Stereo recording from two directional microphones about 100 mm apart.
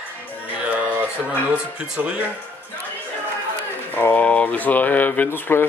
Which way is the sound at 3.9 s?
20° left (ahead or behind).